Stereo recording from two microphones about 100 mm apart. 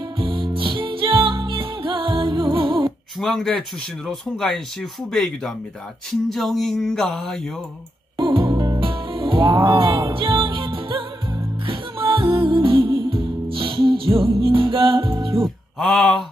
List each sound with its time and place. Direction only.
0.2 s music: 60° right (ahead or behind)
3.2 s speech: 5° left (ahead or behind)
8.2 s music: 55° right (ahead or behind)
8.8 s music: 60° right (ahead or behind)
15.8 s speech: centre (ahead or behind)